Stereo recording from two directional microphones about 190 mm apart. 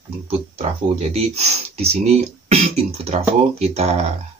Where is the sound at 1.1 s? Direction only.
35° right (ahead or behind).